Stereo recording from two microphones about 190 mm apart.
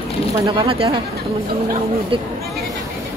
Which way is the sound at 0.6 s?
30° right (ahead or behind).